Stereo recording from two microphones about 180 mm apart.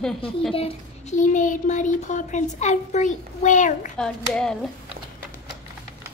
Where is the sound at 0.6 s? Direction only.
35° left (ahead or behind).